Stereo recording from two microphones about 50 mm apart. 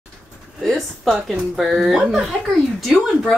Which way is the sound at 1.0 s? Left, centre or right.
Right.